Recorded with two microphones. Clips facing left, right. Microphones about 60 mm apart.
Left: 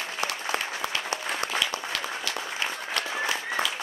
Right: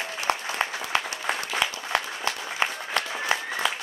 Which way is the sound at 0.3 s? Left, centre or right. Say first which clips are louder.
Right 4 dB; right.